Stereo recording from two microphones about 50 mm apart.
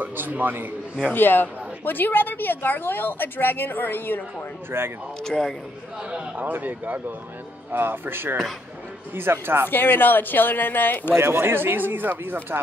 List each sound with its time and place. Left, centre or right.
0.0 s speech: right
1.1 s a woman's voice: left
4.6 s speech: right
5.2 s speech: centre
6.3 s speech: right
9.7 s a woman's voice: left
11.1 s speech: right